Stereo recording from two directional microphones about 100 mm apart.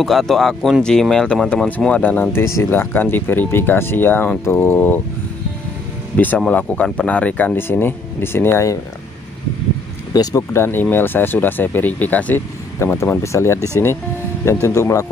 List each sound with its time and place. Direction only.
0.0 s speech: centre (ahead or behind); by 5.0 s 20° left (ahead or behind)
6.1 s speech: 15° left (ahead or behind)
10.1 s speech: 30° left (ahead or behind)
12.7 s speech: 30° left (ahead or behind)